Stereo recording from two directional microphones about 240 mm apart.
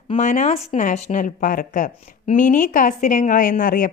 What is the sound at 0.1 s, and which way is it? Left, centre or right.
A woman's voice, left.